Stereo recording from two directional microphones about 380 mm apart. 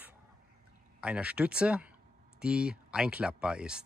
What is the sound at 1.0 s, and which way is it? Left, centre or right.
Speech, centre.